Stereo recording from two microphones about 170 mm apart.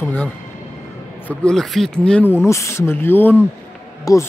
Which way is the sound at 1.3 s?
5° left (ahead or behind).